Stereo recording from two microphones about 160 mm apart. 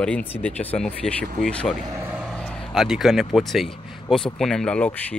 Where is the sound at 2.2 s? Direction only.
5° left (ahead or behind).